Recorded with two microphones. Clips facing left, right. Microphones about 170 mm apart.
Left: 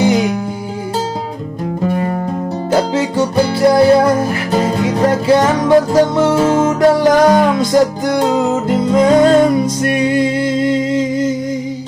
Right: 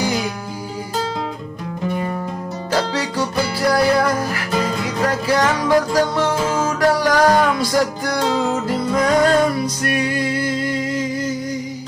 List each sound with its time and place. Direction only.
0.0 s music: 20° left (ahead or behind)
1.9 s music: 45° left (ahead or behind)
2.7 s music: 25° left (ahead or behind)